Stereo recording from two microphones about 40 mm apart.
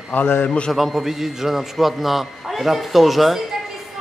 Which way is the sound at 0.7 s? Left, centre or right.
Centre.